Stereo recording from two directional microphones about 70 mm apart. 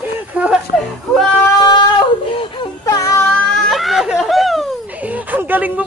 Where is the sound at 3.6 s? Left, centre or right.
Centre.